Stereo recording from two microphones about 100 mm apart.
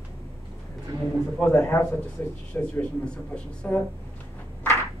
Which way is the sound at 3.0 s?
10° left (ahead or behind).